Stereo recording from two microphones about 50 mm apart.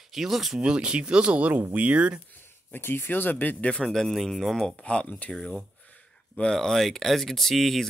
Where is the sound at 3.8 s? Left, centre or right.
Centre.